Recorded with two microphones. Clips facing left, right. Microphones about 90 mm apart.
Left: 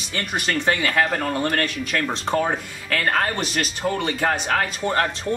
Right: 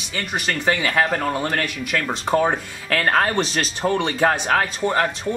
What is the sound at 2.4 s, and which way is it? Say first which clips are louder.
Speech: right 3 dB; 25° right (ahead or behind).